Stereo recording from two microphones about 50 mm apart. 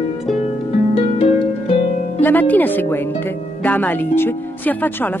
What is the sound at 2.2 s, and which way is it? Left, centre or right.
Speech, left.